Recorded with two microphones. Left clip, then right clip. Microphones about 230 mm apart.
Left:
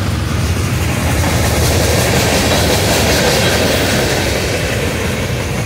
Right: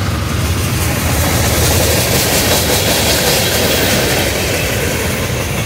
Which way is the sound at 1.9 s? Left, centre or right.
Right.